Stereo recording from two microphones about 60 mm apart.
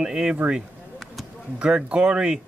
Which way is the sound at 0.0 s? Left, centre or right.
Centre.